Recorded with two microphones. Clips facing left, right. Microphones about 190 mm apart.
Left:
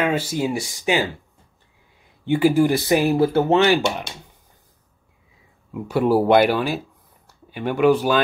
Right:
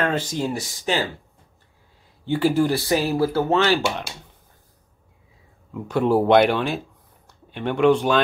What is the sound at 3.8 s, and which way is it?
Speech, 5° left (ahead or behind).